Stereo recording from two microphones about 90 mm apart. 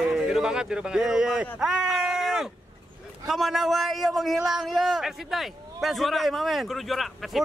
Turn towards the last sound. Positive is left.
turn(degrees=0)  # may be behind; listen again after turning